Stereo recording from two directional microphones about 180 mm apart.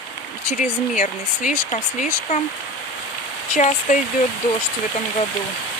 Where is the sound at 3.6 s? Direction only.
45° left (ahead or behind).